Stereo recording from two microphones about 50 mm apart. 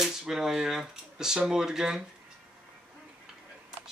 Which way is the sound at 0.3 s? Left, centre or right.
Centre.